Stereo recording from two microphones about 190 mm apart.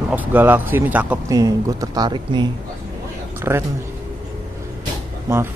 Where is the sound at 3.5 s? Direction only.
15° right (ahead or behind).